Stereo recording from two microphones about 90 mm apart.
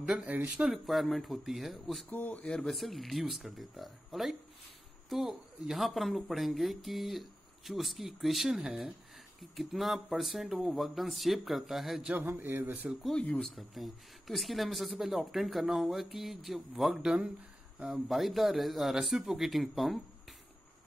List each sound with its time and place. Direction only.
0.0 s speech: 5° right (ahead or behind)
0.3 s speech: 20° right (ahead or behind)
0.8 s speech: centre (ahead or behind)
2.0 s speech: 20° left (ahead or behind); by 12.1 s centre (ahead or behind)
12.1 s speech: 20° right (ahead or behind)
13.2 s speech: 15° left (ahead or behind)
13.6 s speech: centre (ahead or behind)